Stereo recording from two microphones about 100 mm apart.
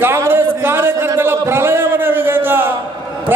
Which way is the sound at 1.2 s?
25° right (ahead or behind).